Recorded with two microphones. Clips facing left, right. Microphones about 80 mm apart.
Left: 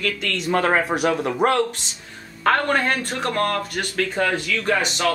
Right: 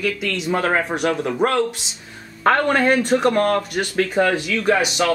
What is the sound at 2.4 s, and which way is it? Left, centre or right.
Speech, centre.